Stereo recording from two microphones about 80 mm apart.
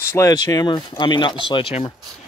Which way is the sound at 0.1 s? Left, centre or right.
Left.